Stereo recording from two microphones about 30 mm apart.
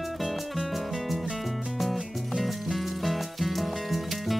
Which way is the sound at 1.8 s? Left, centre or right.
Centre.